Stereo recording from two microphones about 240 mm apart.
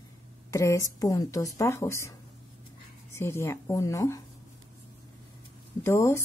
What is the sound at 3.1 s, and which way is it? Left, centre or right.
Speech, centre.